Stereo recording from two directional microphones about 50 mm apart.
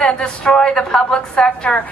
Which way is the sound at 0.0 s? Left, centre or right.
Centre.